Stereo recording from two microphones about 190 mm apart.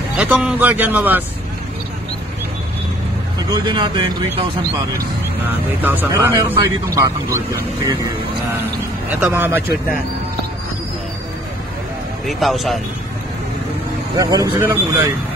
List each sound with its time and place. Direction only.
0.2 s speech: 5° right (ahead or behind)
3.6 s speech: 25° right (ahead or behind)
5.8 s speech: 10° right (ahead or behind)
9.2 s speech: 10° right (ahead or behind)
12.3 s speech: centre (ahead or behind)
14.1 s speech: 20° right (ahead or behind)